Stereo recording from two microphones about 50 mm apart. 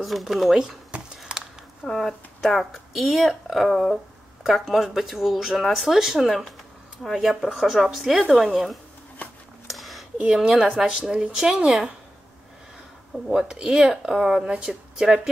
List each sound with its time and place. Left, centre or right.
0.0 s speech: centre
1.9 s speech: centre
9.7 s a sound: centre
10.2 s speech: centre
13.3 s speech: centre